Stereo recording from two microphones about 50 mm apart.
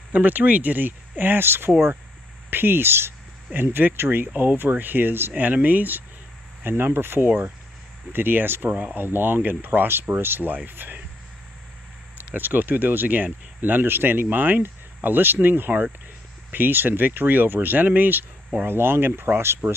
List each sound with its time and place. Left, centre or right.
0.1 s speech: right
3.5 s speech: right
5.4 s speech: right
6.6 s speech: right
12.4 s speech: right
18.7 s speech: right